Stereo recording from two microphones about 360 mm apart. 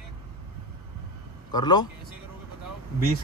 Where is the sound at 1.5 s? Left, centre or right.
Centre.